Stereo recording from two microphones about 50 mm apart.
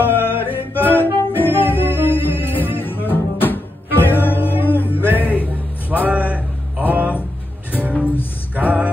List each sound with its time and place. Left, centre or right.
0.3 s music: left
5.1 s music: right
5.9 s a sound: right
7.7 s music: right